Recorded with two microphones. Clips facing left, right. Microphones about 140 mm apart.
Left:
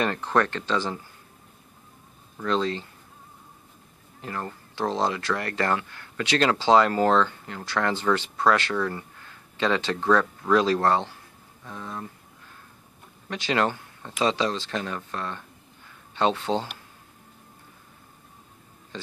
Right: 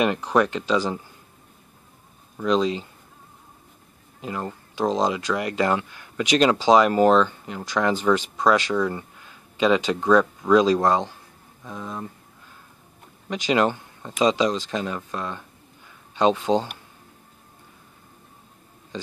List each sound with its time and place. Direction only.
0.0 s speech: 15° right (ahead or behind)
2.3 s speech: 15° right (ahead or behind)
4.2 s speech: 15° right (ahead or behind)
13.3 s speech: 20° right (ahead or behind)